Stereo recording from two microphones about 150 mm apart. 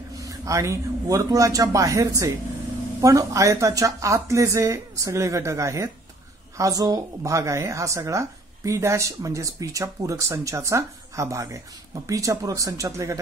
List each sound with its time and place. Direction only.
0.2 s a woman's voice: 20° right (ahead or behind)